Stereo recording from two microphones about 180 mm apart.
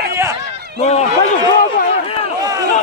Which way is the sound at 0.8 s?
40° left (ahead or behind).